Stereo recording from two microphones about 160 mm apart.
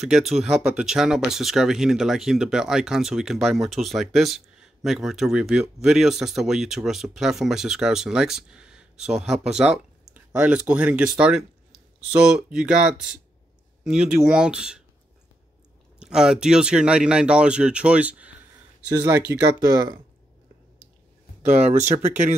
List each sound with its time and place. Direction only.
0.0 s speech: centre (ahead or behind)
16.0 s speech: 5° right (ahead or behind)
18.9 s speech: 20° right (ahead or behind)
21.5 s speech: 45° right (ahead or behind)